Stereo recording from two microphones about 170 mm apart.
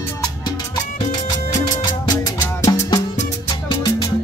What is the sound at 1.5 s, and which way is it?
Music, 20° left (ahead or behind).